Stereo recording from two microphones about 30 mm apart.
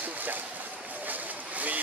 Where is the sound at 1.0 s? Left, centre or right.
Right.